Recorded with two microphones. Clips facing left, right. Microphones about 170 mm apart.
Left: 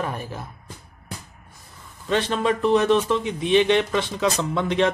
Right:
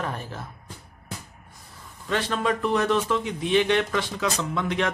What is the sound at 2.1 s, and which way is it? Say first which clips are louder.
Speech: left 3 dB; 20° left (ahead or behind).